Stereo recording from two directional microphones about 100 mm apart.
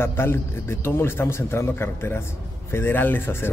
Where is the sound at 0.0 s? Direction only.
25° left (ahead or behind).